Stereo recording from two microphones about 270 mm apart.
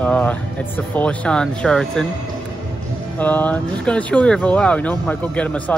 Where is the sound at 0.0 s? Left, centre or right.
Centre.